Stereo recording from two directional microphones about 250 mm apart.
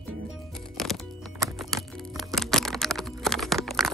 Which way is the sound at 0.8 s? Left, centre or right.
Centre.